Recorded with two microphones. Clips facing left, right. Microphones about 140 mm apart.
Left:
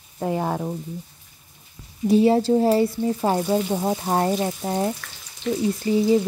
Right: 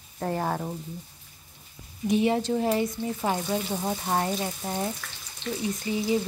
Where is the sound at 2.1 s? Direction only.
35° left (ahead or behind).